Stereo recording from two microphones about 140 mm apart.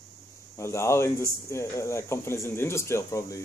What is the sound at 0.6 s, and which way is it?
Speech, 20° left (ahead or behind).